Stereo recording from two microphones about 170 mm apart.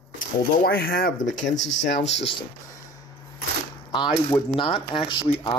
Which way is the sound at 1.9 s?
40° left (ahead or behind).